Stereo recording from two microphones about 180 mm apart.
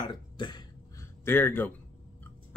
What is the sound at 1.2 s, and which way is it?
Speech, 15° left (ahead or behind).